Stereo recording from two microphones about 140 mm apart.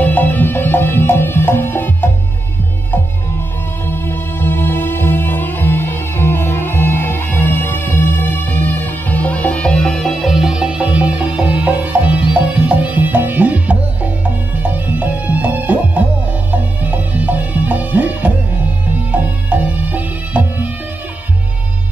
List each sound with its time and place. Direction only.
0.0 s music: 10° left (ahead or behind)
3.9 s music: 15° left (ahead or behind); by 20.6 s 10° right (ahead or behind)